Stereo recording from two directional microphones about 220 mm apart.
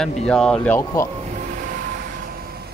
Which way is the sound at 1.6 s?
35° right (ahead or behind).